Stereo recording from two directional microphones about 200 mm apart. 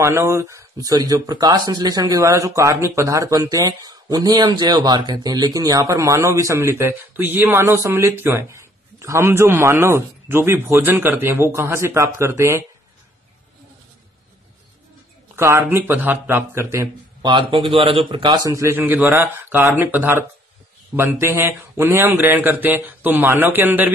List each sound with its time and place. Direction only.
0.0 s speech: 15° right (ahead or behind)
15.3 s speech: 15° right (ahead or behind)
17.3 s speech: 25° right (ahead or behind); by 23.9 s 10° right (ahead or behind)